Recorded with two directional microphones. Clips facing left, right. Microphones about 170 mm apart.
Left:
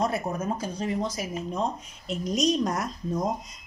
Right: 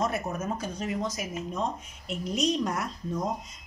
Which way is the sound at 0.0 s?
35° left (ahead or behind).